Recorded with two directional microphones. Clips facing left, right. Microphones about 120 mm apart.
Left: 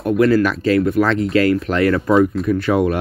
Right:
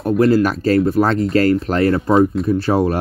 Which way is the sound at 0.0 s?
35° right (ahead or behind).